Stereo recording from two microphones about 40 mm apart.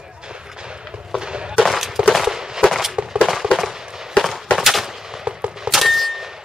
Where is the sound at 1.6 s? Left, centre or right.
Centre.